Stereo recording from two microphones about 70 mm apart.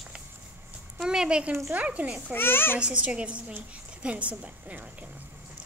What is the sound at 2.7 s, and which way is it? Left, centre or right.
A woman's voice, centre.